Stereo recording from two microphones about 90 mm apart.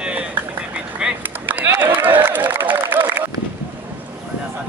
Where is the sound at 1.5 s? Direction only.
20° right (ahead or behind).